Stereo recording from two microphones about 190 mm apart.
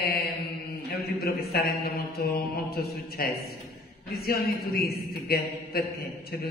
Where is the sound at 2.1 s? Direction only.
55° left (ahead or behind).